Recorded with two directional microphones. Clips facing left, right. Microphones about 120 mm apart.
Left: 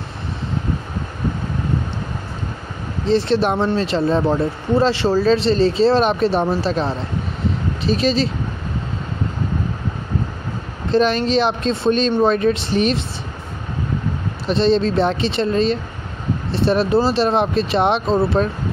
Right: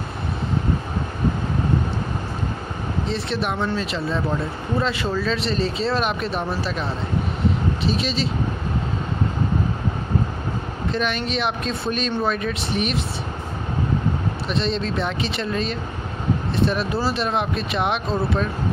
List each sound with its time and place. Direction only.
3.3 s speech: 35° left (ahead or behind)
10.9 s speech: 35° left (ahead or behind)
14.5 s speech: 35° left (ahead or behind)